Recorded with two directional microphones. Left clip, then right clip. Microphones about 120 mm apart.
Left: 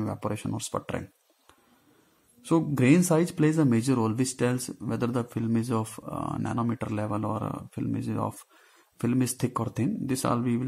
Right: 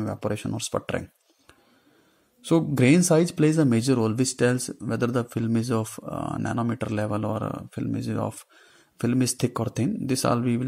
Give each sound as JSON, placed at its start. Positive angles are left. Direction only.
{"t": 0.0, "sound": "speech", "side_deg": -25}
{"t": 2.4, "sound": "speech", "side_deg": -35}